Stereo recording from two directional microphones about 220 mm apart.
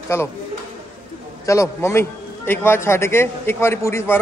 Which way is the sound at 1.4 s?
15° left (ahead or behind).